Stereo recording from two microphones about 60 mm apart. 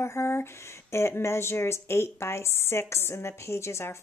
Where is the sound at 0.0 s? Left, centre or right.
Left.